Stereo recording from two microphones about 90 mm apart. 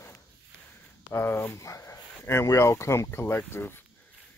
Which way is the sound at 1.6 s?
35° left (ahead or behind).